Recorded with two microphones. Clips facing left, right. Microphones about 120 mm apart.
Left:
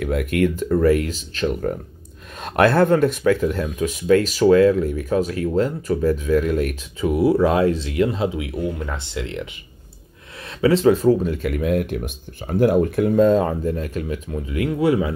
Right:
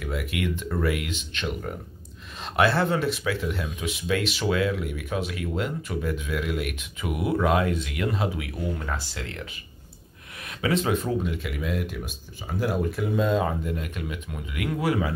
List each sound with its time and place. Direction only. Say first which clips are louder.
0.0 s speech: left 10 dB; 50° left (ahead or behind); by 9.5 s 25° left (ahead or behind)
10.6 s speech: left 10 dB; 30° left (ahead or behind)